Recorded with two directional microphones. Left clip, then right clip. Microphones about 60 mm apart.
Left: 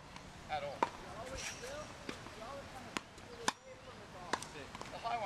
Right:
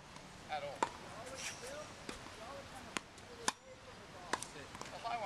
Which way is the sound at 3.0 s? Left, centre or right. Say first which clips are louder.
Even; right.